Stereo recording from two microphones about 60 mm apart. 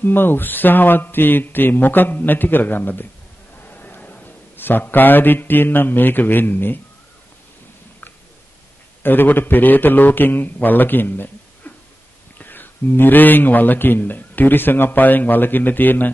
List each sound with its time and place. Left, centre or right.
0.0 s a man's voice: left
9.0 s speech: left